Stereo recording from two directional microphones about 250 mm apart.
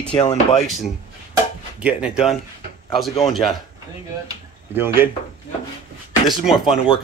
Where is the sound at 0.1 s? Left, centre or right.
Centre.